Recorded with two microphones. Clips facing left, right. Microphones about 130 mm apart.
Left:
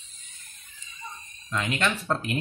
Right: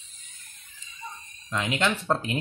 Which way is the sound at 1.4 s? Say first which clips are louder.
Right 1 dB; 20° right (ahead or behind).